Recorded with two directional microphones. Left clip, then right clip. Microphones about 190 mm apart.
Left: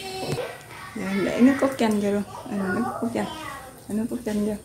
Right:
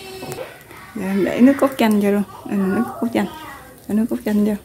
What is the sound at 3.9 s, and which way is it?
Speech, 55° right (ahead or behind).